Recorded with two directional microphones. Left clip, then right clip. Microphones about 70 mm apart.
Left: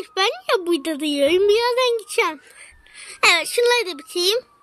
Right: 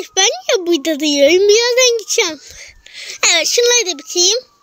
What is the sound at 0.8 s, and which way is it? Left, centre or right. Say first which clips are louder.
A child's voice: right 8 dB; right.